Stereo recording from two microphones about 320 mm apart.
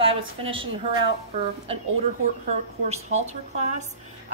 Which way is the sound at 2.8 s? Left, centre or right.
Right.